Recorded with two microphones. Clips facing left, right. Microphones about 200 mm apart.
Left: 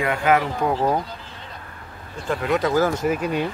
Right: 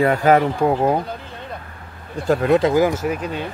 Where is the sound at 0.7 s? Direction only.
20° right (ahead or behind).